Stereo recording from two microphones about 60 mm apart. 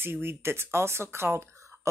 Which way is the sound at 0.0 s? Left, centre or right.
Right.